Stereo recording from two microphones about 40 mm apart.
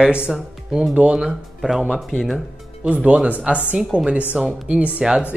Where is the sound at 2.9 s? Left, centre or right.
Right.